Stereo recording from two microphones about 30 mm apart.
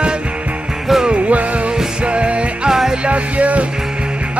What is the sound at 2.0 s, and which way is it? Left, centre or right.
Music, right.